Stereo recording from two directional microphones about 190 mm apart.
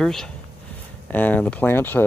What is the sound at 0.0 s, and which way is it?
Speech, centre (ahead or behind).